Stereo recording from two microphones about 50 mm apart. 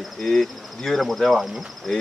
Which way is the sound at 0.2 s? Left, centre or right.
Centre.